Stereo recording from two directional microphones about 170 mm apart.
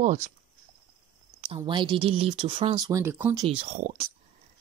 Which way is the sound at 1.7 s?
30° right (ahead or behind).